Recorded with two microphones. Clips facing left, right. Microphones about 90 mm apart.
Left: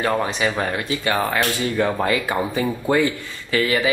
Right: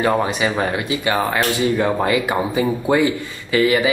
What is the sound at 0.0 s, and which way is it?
Speech, 10° right (ahead or behind).